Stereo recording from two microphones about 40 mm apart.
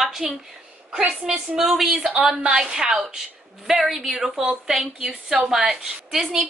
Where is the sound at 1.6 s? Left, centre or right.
Centre.